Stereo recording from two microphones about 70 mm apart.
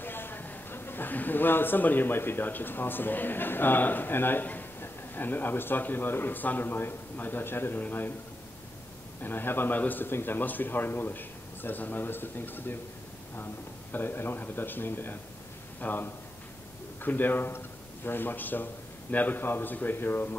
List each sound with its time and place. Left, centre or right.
0.0 s a man's voice: left
9.2 s a man's voice: left
13.9 s a man's voice: left